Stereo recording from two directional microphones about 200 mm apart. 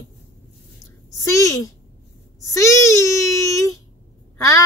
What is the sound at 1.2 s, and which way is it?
Speech, 15° left (ahead or behind).